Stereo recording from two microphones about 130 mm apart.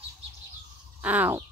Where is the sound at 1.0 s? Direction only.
10° right (ahead or behind).